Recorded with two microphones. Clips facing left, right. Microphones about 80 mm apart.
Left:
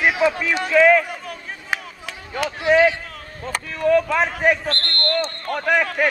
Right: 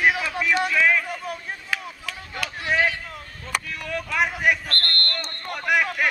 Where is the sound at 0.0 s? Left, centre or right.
Left.